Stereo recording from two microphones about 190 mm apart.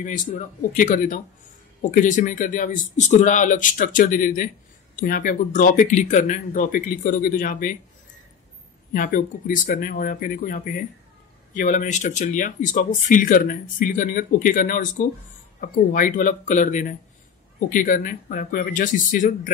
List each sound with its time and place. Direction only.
0.0 s speech: 45° left (ahead or behind)
8.9 s speech: 45° left (ahead or behind)